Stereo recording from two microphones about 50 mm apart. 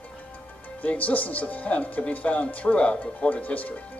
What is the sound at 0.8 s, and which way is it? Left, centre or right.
Speech, left.